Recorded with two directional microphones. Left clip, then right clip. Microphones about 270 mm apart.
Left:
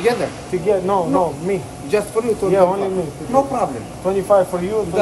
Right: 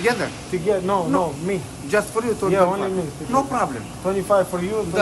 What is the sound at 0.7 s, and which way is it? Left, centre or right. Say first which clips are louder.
Speech: left 3 dB; centre.